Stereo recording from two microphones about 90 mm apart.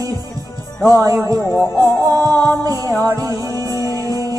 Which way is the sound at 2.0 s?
45° right (ahead or behind).